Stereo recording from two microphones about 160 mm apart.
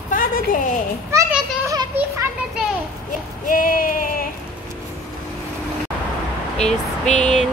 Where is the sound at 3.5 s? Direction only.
60° left (ahead or behind).